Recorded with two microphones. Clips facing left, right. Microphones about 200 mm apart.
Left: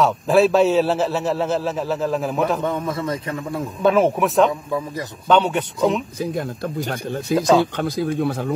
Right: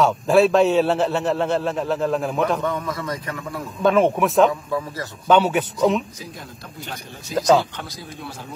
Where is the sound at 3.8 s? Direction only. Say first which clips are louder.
Even; 5° left (ahead or behind).